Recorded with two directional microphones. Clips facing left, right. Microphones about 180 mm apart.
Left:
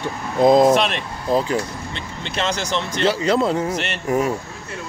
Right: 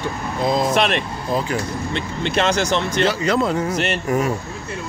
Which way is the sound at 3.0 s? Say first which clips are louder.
Left 4 dB; 30° left (ahead or behind).